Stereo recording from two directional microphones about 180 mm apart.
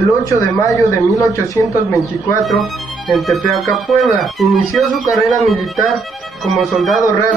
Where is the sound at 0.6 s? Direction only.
15° left (ahead or behind).